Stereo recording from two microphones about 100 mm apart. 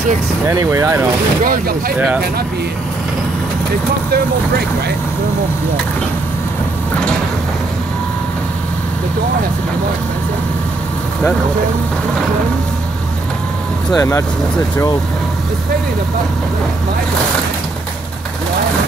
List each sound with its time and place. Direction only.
0.5 s speech: 30° right (ahead or behind)
13.9 s speech: 30° left (ahead or behind)